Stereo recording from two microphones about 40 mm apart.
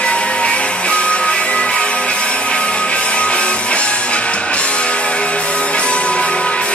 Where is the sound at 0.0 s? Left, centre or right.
Left.